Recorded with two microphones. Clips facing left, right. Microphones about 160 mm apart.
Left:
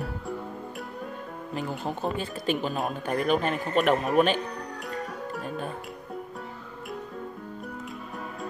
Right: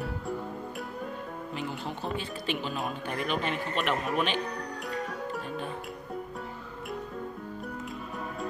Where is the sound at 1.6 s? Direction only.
45° left (ahead or behind).